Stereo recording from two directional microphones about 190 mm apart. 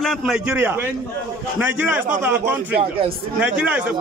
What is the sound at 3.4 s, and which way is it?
Speech, 5° right (ahead or behind).